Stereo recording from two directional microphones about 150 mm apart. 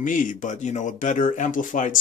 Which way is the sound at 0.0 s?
60° left (ahead or behind).